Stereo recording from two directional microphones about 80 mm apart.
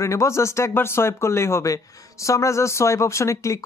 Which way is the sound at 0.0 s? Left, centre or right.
Left.